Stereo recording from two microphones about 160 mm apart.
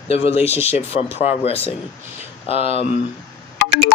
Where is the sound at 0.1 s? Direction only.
40° left (ahead or behind).